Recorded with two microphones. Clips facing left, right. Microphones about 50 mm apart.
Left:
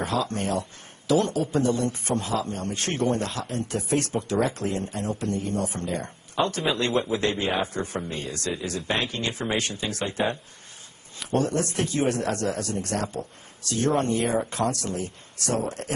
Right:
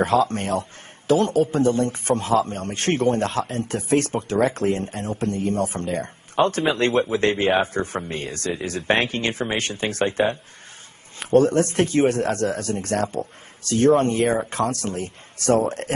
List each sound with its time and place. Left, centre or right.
0.0 s a man's voice: right